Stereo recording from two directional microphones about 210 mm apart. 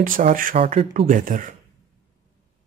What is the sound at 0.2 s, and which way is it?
Speech, 40° right (ahead or behind).